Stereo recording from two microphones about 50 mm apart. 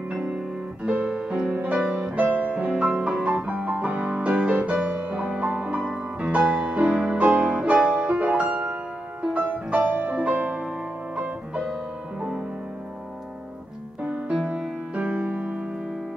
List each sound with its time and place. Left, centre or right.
0.1 s music: centre
1.8 s music: centre
2.1 s music: right
2.9 s music: centre
3.4 s music: right
14.3 s music: right